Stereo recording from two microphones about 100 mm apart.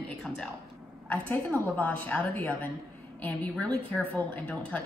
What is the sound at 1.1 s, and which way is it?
A woman's voice, 15° left (ahead or behind).